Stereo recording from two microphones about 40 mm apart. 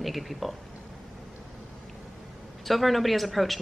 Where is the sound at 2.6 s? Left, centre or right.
Centre.